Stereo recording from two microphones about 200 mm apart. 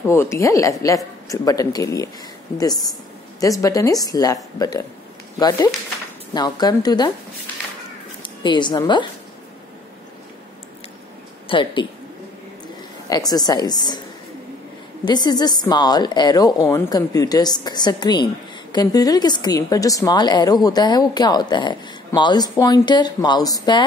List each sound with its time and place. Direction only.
0.0 s a woman's voice: 15° left (ahead or behind)
8.2 s speech: 25° left (ahead or behind)
11.4 s speech: 25° left (ahead or behind)
13.1 s a woman's voice: 20° left (ahead or behind)
15.0 s a woman's voice: 20° left (ahead or behind)